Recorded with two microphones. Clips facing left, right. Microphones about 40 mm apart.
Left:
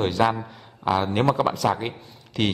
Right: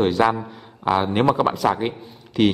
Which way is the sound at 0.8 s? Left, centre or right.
Centre.